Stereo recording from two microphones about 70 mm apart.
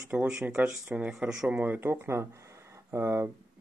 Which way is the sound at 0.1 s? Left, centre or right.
Right.